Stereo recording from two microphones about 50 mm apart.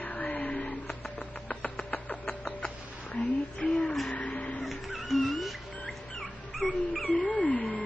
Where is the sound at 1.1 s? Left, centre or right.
Left.